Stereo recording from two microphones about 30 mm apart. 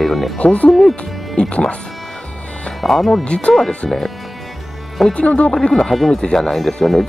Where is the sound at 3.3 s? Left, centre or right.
Left.